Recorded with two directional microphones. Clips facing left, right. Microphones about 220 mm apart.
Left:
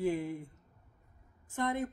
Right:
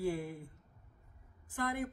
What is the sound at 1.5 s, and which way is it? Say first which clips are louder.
Speech: left 3 dB; 25° left (ahead or behind).